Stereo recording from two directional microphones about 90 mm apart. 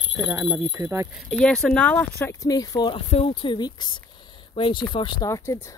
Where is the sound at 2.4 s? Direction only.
40° left (ahead or behind).